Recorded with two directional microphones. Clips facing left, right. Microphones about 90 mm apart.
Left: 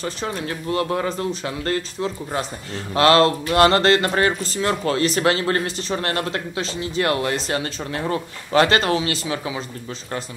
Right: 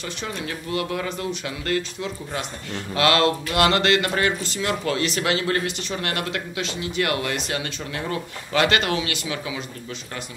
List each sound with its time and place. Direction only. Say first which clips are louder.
0.0 s speech: left 4 dB; 35° left (ahead or behind)